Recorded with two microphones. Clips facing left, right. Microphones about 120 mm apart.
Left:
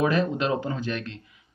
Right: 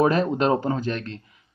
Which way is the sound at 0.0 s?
40° right (ahead or behind).